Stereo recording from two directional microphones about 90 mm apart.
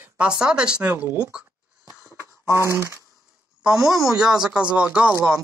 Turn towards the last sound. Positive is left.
turn(degrees=-15)  # may be behind; listen again after turning